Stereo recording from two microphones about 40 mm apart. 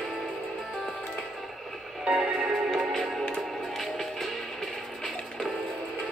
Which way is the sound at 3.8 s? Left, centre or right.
Centre.